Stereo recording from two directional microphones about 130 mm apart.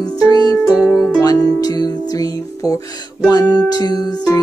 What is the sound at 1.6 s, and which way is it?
Music, 30° left (ahead or behind).